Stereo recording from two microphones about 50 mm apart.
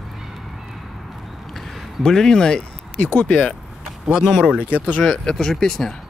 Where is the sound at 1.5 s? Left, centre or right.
Centre.